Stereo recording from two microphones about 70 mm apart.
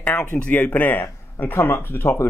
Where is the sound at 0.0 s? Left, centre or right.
Left.